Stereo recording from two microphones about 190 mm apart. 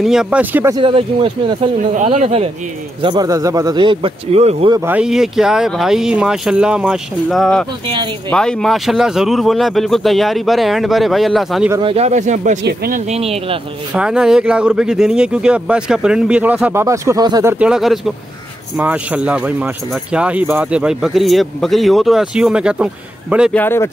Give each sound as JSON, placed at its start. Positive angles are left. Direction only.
{"t": 0.0, "sound": "speech", "side_deg": -5}
{"t": 0.7, "sound": "a man's voice", "side_deg": -30}
{"t": 3.0, "sound": "a man's voice", "side_deg": -20}
{"t": 4.7, "sound": "speech", "side_deg": -10}
{"t": 11.8, "sound": "speech", "side_deg": -30}
{"t": 12.6, "sound": "speech", "side_deg": -55}
{"t": 13.1, "sound": "speech", "side_deg": -30}
{"t": 13.9, "sound": "speech", "side_deg": -5}
{"t": 23.5, "sound": "speech", "side_deg": 10}